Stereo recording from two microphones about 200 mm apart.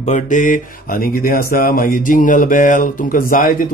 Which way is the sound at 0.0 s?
40° left (ahead or behind).